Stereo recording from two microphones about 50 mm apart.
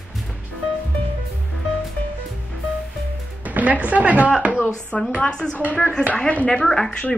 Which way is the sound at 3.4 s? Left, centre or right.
Right.